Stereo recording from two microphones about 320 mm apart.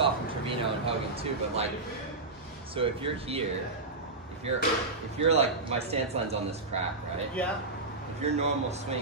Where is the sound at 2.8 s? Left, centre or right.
Centre.